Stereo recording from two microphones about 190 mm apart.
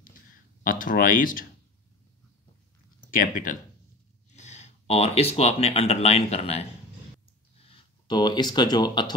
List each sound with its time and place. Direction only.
0.7 s speech: 45° left (ahead or behind)
3.1 s speech: 45° left (ahead or behind)
7.7 s speech: 20° left (ahead or behind)